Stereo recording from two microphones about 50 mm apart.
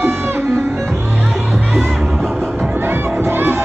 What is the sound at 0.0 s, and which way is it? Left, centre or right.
Music, right.